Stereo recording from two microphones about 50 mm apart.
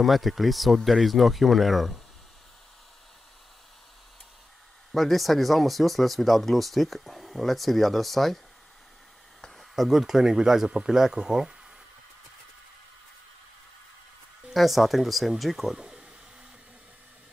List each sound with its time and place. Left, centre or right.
0.0 s speech: centre
4.9 s speech: centre
9.6 s speech: centre
14.5 s speech: centre